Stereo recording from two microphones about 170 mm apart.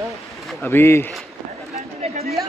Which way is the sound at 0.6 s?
15° left (ahead or behind).